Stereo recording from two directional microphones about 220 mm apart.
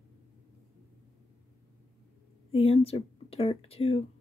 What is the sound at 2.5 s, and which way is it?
Speech, 25° left (ahead or behind).